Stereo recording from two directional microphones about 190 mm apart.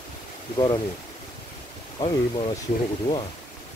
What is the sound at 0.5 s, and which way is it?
Speech, 20° left (ahead or behind).